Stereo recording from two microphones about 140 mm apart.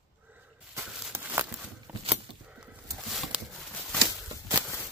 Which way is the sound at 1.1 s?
15° right (ahead or behind).